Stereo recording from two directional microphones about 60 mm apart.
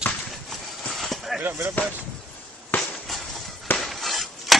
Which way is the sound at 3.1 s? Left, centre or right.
Centre.